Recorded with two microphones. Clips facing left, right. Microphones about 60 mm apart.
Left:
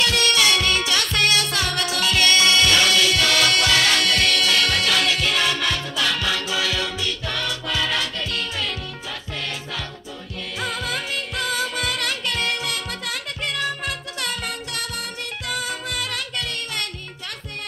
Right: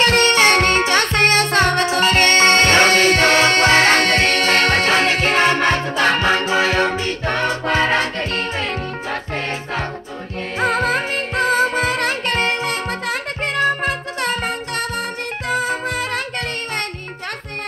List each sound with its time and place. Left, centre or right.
0.0 s music: right
10.6 s music: right